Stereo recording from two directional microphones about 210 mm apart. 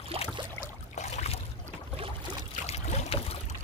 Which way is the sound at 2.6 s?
30° left (ahead or behind).